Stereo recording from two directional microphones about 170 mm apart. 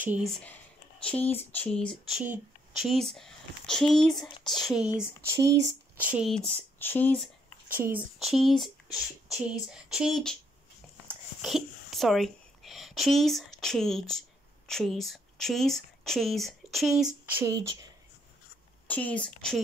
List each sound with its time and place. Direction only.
0.0 s speech: 10° right (ahead or behind)
0.3 s speech: 10° left (ahead or behind)
5.3 s speech: 20° right (ahead or behind)
5.9 s speech: 10° right (ahead or behind)
6.3 s speech: 10° left (ahead or behind)
7.6 s speech: 10° right (ahead or behind)
8.3 s speech: centre (ahead or behind)
11.4 s speech: centre (ahead or behind)
18.9 s speech: 10° left (ahead or behind)